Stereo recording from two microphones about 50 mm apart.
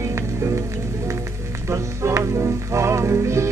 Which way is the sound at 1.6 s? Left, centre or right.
Right.